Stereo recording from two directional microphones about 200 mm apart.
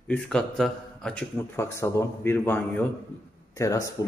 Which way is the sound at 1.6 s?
15° left (ahead or behind).